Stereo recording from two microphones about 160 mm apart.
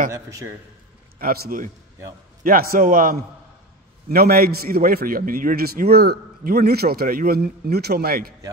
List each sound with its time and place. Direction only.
0.1 s a man's voice: 20° right (ahead or behind)
1.2 s a man's voice: 70° right (ahead or behind)